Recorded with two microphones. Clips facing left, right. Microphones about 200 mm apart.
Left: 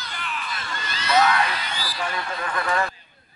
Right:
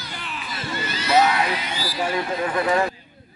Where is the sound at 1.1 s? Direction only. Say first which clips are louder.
Right 2 dB; 25° right (ahead or behind).